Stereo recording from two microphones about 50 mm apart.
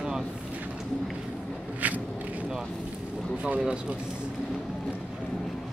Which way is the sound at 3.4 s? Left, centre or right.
Right.